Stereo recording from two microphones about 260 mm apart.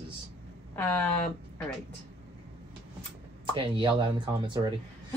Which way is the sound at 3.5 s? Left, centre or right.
Centre.